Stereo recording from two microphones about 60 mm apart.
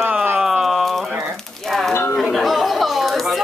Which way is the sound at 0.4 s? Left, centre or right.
Centre.